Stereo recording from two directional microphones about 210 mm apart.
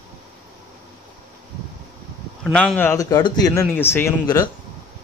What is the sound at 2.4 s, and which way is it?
A man's voice, centre (ahead or behind).